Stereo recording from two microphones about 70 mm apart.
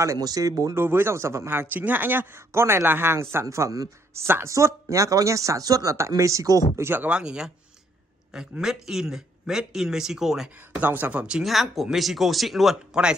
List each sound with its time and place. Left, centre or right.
0.2 s speech: right
0.7 s speech: right
3.4 s speech: right
5.9 s speech: right
6.8 s speech: right
7.1 s speech: centre
10.8 s speech: right
11.4 s speech: centre